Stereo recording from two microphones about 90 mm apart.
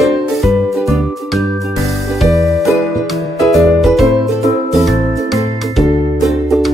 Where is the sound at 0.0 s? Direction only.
Centre (ahead or behind).